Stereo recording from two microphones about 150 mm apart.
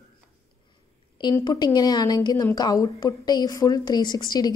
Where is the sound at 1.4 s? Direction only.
25° left (ahead or behind).